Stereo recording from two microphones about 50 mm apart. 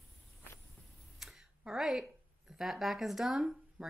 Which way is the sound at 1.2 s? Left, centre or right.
Centre.